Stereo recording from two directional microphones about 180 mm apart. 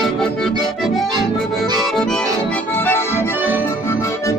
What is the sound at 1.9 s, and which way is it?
Accordion, 5° left (ahead or behind).